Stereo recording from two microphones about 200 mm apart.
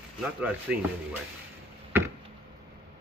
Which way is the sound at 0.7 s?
5° right (ahead or behind).